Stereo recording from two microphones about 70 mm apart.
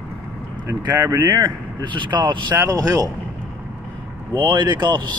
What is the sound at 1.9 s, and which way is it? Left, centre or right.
Speech, right.